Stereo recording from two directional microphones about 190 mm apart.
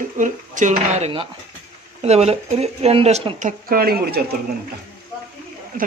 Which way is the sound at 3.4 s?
45° right (ahead or behind).